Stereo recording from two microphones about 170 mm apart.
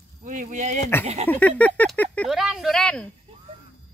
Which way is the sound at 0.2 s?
50° right (ahead or behind).